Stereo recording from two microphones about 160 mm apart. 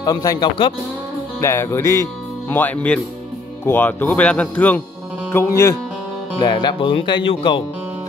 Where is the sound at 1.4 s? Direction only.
15° left (ahead or behind).